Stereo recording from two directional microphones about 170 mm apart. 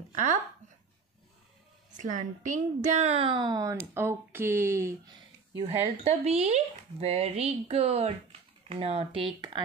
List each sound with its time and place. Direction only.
0.1 s speech: 45° right (ahead or behind)
2.0 s a woman's voice: 45° right (ahead or behind); by 5.1 s 15° right (ahead or behind)
5.6 s speech: 35° right (ahead or behind)